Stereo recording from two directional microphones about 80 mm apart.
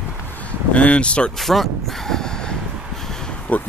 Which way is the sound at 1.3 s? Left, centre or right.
Centre.